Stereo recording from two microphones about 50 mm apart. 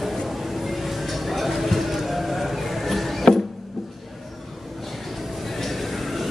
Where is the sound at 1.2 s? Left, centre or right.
Centre.